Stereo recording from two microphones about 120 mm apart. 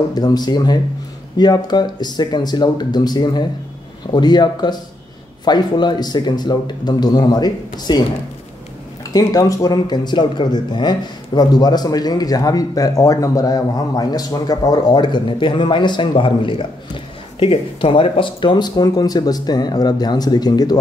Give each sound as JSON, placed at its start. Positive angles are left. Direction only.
{"t": 0.1, "sound": "speech", "side_deg": 35}
{"t": 9.1, "sound": "speech", "side_deg": 30}